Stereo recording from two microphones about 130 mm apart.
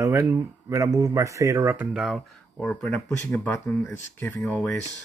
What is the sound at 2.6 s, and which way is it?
Speech, 10° left (ahead or behind).